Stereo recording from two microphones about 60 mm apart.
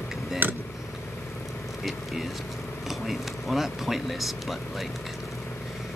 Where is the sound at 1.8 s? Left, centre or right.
Centre.